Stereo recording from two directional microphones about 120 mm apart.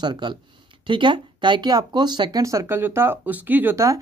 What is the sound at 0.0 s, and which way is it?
Speech, 40° right (ahead or behind).